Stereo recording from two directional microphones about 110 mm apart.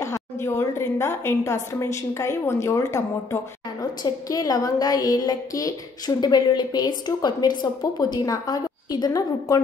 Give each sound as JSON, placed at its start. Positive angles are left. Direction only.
{"t": 0.0, "sound": "a woman's voice", "side_deg": 25}